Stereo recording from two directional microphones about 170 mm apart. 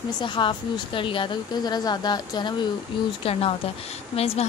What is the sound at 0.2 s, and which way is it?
A woman's voice, 30° left (ahead or behind).